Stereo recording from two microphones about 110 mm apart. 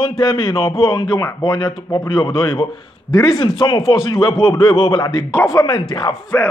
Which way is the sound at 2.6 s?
45° left (ahead or behind).